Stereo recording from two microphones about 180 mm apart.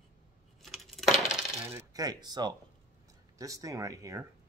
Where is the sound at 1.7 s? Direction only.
15° right (ahead or behind).